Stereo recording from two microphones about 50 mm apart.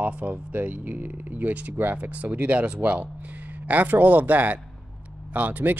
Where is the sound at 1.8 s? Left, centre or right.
Right.